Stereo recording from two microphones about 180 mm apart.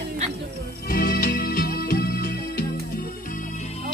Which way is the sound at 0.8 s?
55° left (ahead or behind).